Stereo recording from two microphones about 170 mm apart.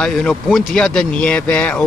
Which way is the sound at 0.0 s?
5° left (ahead or behind).